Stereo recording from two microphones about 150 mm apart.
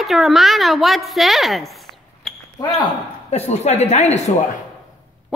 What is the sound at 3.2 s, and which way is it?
Speech, 45° left (ahead or behind).